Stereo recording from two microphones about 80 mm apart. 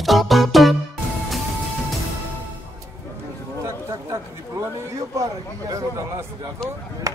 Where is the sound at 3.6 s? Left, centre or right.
Right.